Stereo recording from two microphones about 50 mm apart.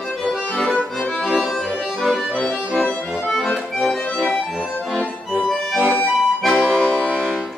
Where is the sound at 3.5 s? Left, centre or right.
Centre.